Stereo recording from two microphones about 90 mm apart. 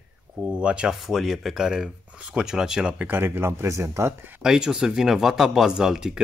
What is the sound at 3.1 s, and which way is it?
Speech, 25° right (ahead or behind).